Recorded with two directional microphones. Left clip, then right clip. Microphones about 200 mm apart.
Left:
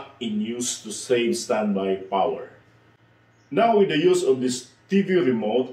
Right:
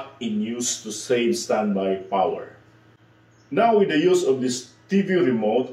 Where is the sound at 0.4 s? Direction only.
15° left (ahead or behind).